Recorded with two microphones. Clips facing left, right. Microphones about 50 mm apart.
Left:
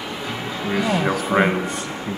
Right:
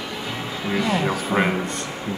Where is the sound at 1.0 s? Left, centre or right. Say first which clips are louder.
Left 3 dB; centre.